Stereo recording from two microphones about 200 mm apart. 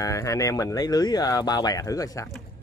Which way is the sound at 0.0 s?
15° left (ahead or behind).